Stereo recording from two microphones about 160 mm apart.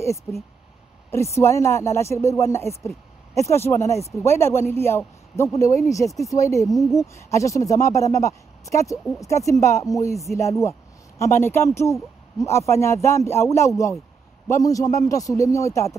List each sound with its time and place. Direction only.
1.1 s speech: 15° left (ahead or behind)
6.6 s speech: centre (ahead or behind)
7.0 s speech: 20° left (ahead or behind)